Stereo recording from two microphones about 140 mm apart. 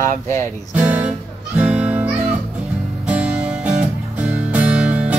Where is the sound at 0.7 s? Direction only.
10° right (ahead or behind).